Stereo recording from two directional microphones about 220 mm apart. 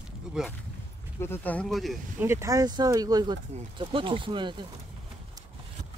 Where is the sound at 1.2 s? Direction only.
10° left (ahead or behind).